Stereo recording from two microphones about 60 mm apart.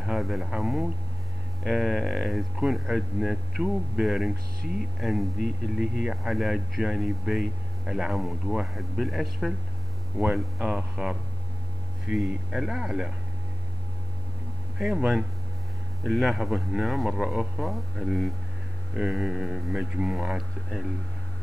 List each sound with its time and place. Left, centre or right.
0.0 s a man's voice: centre
12.1 s speech: centre
14.8 s speech: centre